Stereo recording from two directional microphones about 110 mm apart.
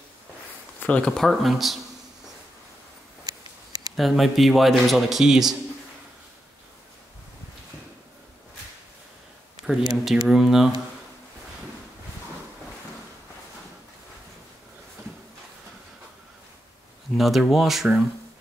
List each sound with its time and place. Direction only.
0.7 s a man's voice: 15° left (ahead or behind)
3.3 s a sound: 35° right (ahead or behind)
3.9 s a man's voice: centre (ahead or behind)
9.6 s a sound: 5° right (ahead or behind)
10.0 s a man's voice: centre (ahead or behind)
17.2 s a man's voice: centre (ahead or behind)